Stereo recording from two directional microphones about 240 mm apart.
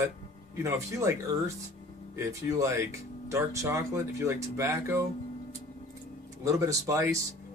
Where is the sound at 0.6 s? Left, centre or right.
Centre.